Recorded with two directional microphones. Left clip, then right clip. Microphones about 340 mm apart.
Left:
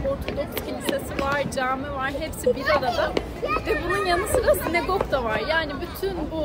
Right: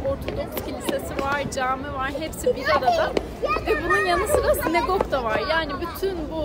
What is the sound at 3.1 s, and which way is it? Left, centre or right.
Children playing, right.